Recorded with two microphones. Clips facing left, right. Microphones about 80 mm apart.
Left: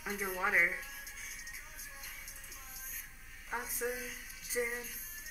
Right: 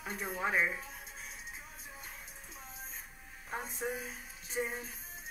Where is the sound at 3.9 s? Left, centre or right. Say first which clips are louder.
Right 1 dB; right.